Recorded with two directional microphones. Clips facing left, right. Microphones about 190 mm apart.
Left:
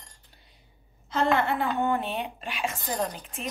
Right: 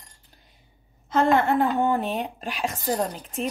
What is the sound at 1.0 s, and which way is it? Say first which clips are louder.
Speech: right 4 dB; 50° right (ahead or behind).